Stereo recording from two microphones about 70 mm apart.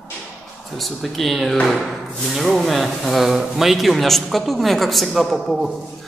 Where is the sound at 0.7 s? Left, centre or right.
Centre.